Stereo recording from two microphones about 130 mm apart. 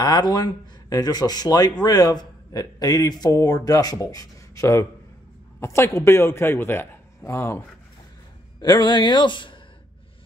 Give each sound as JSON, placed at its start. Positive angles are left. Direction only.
{"t": 0.0, "sound": "speech", "side_deg": 30}
{"t": 8.5, "sound": "speech", "side_deg": 30}